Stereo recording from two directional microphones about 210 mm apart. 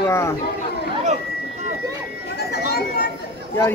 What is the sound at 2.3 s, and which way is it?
Chatter, 50° left (ahead or behind).